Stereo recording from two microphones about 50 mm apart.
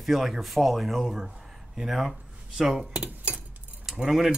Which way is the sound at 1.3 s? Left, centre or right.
Centre.